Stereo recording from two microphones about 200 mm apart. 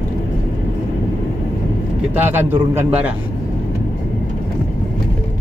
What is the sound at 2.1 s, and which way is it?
A man's voice, 10° right (ahead or behind).